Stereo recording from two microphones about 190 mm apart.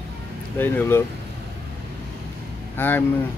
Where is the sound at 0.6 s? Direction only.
10° left (ahead or behind).